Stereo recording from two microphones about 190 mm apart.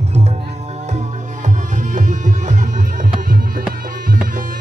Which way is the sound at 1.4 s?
40° right (ahead or behind).